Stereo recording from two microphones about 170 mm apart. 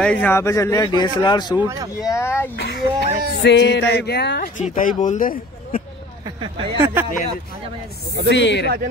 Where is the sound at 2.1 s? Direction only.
15° left (ahead or behind).